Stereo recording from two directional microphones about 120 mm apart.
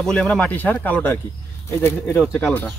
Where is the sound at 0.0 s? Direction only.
5° left (ahead or behind).